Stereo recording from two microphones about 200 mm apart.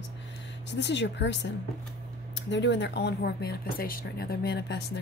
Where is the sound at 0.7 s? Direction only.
60° left (ahead or behind).